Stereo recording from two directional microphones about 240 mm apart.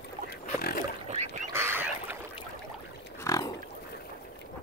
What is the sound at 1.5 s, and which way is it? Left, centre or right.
Goose, centre.